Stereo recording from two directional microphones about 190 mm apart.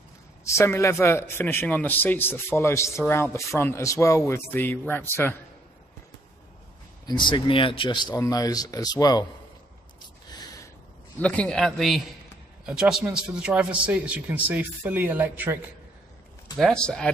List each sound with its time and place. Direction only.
0.4 s speech: 15° left (ahead or behind)
7.1 s speech: 25° left (ahead or behind)
10.3 s a sound: 20° left (ahead or behind)
11.1 s a man's voice: 5° left (ahead or behind); by 15.6 s 10° right (ahead or behind)
16.5 s a man's voice: centre (ahead or behind)